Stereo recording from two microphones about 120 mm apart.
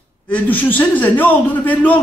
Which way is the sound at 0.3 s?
15° left (ahead or behind).